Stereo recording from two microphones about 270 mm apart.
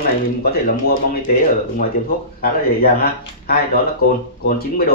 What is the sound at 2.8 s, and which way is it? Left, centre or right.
Speech, left.